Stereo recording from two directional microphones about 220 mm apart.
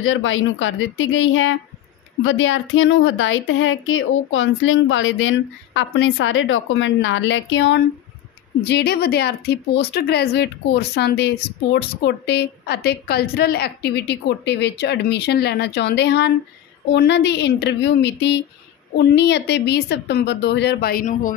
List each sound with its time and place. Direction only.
0.0 s speech: 60° left (ahead or behind); by 21.4 s 35° left (ahead or behind)